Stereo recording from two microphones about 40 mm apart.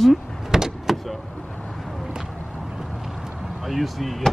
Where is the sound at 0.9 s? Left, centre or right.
Centre.